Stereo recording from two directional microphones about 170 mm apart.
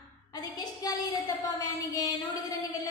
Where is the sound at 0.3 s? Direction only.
25° left (ahead or behind).